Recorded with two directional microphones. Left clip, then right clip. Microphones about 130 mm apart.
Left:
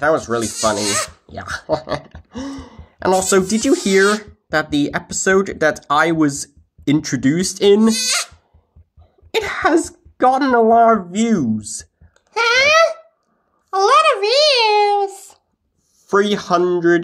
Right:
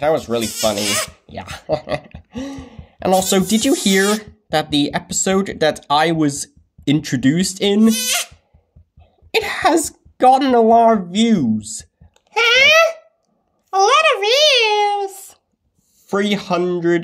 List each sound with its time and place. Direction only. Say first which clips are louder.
0.0 s speech: left 1 dB; 5° right (ahead or behind)
0.4 s speech: left 1 dB; 70° right (ahead or behind)
1.2 s speech: left 4 dB; 10° right (ahead or behind)
1.7 s a sound: right 1 dB; 10° right (ahead or behind)
3.2 s speech: left 1 dB; 20° right (ahead or behind)
3.9 s speech: left 2 dB; 60° right (ahead or behind)
4.6 s speech: even; 20° right (ahead or behind)
9.3 s speech: right 1 dB; 20° right (ahead or behind)
12.3 s babbling: right 2 dB; 65° right (ahead or behind)
16.1 s speech: left 3 dB; 5° right (ahead or behind)